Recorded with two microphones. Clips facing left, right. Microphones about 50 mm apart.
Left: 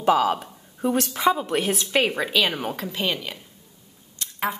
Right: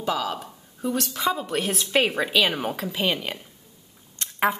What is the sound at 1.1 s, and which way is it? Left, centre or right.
A woman's voice, centre.